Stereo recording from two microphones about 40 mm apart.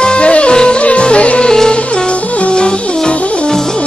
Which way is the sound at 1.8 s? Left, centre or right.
Left.